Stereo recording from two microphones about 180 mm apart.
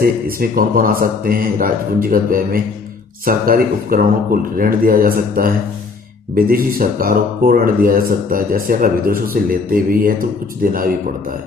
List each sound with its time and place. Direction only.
0.0 s speech: 55° right (ahead or behind)